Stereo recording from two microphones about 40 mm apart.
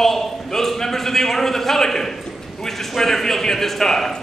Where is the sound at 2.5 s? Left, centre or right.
Centre.